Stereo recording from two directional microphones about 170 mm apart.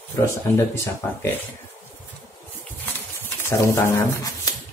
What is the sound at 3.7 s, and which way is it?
Speech, 15° left (ahead or behind).